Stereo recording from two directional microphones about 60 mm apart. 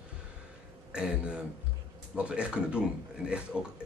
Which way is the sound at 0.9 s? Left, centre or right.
Centre.